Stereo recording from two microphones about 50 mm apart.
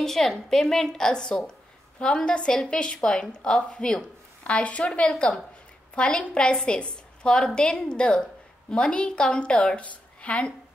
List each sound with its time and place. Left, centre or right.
0.0 s a woman's voice: centre
4.5 s a woman's voice: left